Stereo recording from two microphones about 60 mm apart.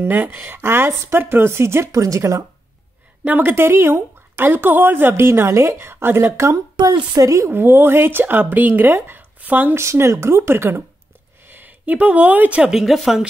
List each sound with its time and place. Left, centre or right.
0.0 s speech: right
1.9 s speech: right
3.3 s speech: right
6.3 s speech: right
7.5 s speech: right
9.8 s speech: right
11.4 s speech: right
12.6 s speech: centre